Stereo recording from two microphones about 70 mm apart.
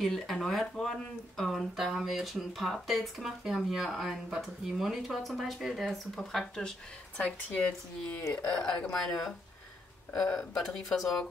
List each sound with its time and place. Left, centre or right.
0.0 s speech: centre